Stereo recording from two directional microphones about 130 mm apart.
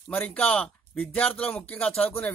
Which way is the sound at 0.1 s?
5° left (ahead or behind).